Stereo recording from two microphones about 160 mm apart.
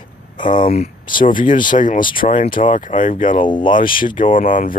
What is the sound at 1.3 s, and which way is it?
Speech, 55° left (ahead or behind).